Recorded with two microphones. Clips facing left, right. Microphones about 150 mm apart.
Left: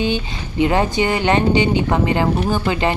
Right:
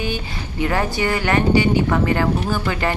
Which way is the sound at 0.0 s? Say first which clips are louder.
Left 5 dB; 20° left (ahead or behind).